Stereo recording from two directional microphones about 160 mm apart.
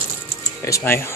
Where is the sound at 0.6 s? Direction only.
15° left (ahead or behind).